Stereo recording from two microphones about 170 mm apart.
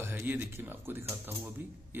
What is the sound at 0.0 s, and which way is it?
A man's voice, 10° right (ahead or behind).